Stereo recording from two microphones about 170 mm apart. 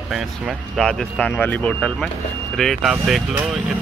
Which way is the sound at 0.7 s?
5° left (ahead or behind).